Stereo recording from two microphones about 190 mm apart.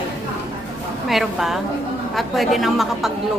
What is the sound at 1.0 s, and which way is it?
A woman's voice, centre (ahead or behind).